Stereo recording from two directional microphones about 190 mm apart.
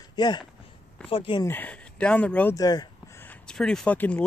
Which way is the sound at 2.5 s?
20° left (ahead or behind).